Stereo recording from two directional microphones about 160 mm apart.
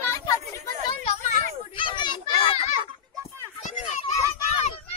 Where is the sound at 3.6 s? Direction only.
50° left (ahead or behind).